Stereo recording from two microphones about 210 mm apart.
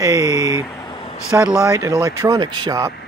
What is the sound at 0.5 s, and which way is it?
Vehicle, 15° left (ahead or behind).